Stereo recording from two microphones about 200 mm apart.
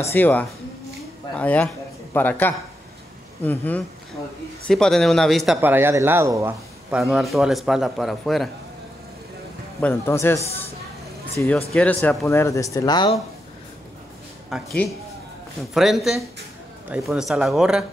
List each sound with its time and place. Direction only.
0.1 s speech: 10° left (ahead or behind)
5.6 s speech: 10° right (ahead or behind)
9.8 s speech: 10° left (ahead or behind)
14.5 s speech: centre (ahead or behind)
15.7 s speech: centre (ahead or behind)